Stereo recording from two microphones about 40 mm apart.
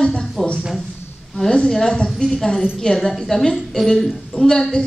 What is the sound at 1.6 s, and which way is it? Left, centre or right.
A woman's voice, centre.